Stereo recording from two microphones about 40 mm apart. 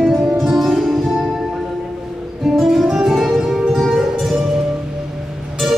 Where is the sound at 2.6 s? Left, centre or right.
Centre.